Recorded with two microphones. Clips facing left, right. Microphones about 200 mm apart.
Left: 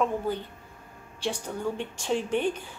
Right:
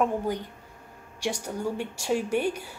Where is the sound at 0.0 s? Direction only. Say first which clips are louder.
Right 1 dB; 15° right (ahead or behind).